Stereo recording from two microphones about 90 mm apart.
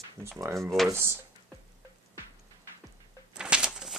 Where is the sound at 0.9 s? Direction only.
25° right (ahead or behind).